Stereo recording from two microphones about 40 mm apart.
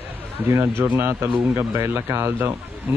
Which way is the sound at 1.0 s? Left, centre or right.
Right.